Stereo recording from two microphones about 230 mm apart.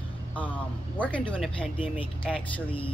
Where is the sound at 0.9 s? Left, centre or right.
Centre.